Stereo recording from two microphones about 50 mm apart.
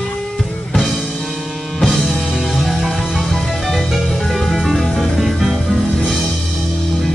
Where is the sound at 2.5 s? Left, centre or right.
Centre.